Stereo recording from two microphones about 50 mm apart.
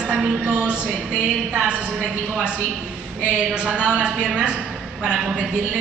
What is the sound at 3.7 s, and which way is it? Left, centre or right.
Speech, centre.